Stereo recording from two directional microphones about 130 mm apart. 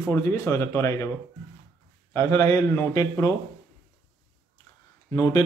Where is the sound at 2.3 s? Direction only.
20° left (ahead or behind).